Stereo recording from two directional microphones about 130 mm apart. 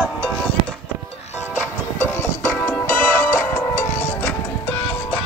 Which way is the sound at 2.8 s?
80° left.